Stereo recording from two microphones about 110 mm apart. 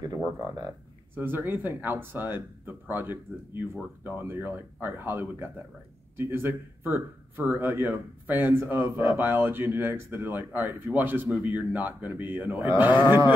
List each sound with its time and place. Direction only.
1.1 s speech: 20° right (ahead or behind)